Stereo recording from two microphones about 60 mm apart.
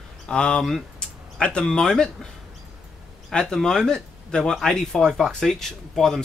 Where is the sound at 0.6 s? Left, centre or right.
Centre.